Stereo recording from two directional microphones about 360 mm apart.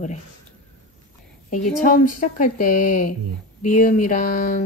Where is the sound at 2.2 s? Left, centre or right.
Left.